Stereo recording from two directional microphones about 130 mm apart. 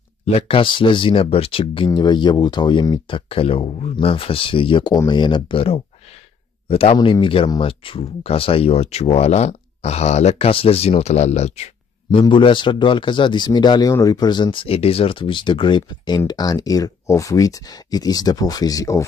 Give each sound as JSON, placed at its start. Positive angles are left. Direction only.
{"t": 0.2, "sound": "speech", "side_deg": 50}
{"t": 1.9, "sound": "speech", "side_deg": 35}
{"t": 12.2, "sound": "speech", "side_deg": 40}